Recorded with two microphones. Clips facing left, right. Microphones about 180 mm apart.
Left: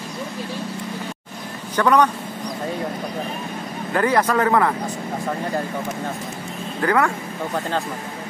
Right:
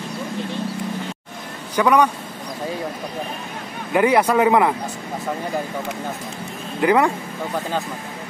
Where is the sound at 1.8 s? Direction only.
10° right (ahead or behind).